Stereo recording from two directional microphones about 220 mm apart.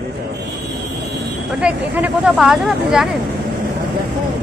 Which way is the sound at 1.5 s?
5° right (ahead or behind).